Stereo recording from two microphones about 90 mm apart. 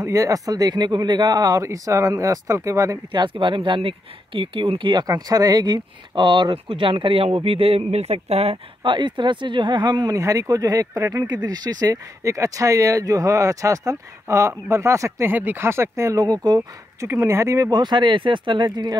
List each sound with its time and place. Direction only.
0.0 s speech: 35° right (ahead or behind)
3.1 s speech: 60° right (ahead or behind)
5.0 s speech: 40° right (ahead or behind); by 7.8 s 90° right
8.5 s speech: 65° right (ahead or behind); by 11.2 s 35° right (ahead or behind)
11.2 s speech: 50° right (ahead or behind)
15.3 s speech: 25° right (ahead or behind); by 17.1 s 45° right (ahead or behind)
17.1 s speech: 25° right (ahead or behind); by 18.9 s 55° right (ahead or behind)